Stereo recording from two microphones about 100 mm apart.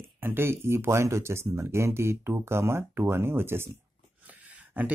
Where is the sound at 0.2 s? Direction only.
25° right (ahead or behind).